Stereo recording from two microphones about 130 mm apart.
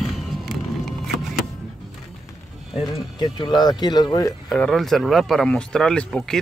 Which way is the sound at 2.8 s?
35° left (ahead or behind).